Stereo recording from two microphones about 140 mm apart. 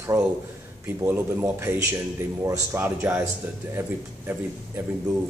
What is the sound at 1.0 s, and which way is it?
Speech, 20° right (ahead or behind).